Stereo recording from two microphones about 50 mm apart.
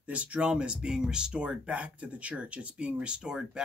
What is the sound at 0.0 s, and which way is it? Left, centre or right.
Speech, right.